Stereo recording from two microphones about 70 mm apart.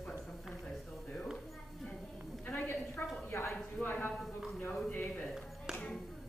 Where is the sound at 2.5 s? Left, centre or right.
Left.